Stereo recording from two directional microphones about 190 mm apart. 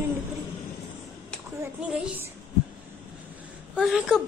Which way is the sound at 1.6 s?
5° right (ahead or behind).